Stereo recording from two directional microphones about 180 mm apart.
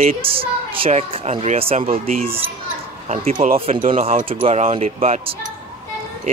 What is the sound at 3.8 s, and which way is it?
Speech, 45° right (ahead or behind).